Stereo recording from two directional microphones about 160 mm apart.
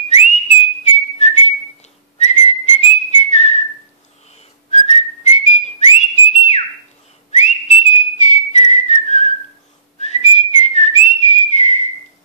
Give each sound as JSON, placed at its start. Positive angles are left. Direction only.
{"t": 0.1, "sound": "whistling", "side_deg": 45}
{"t": 4.6, "sound": "whistling", "side_deg": 45}
{"t": 6.3, "sound": "whistle", "side_deg": 45}
{"t": 7.4, "sound": "whistling", "side_deg": 45}